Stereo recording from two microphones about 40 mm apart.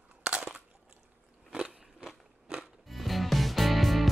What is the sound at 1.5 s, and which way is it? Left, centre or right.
Biting, right.